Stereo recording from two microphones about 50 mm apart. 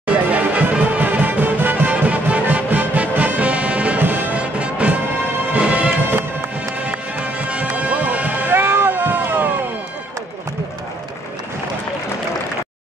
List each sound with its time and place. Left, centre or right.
0.0 s music: right
4.0 s music: right
8.5 s a sound: right